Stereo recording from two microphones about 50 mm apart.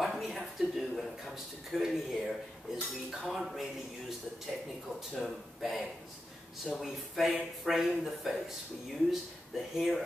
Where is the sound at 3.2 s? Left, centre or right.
Centre.